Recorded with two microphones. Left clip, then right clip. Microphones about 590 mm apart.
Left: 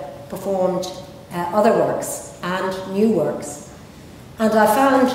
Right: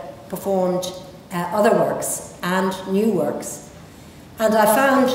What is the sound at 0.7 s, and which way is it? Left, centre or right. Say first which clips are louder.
A woman's voice: even; centre.